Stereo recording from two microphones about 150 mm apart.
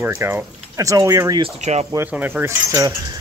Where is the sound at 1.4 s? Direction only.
45° right (ahead or behind).